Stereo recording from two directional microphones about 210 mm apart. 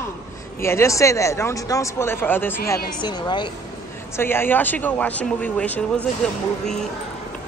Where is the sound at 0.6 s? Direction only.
10° left (ahead or behind).